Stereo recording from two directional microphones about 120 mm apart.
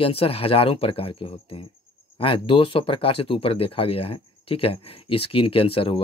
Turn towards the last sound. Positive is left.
turn(degrees=50)  # may be behind; listen again after turning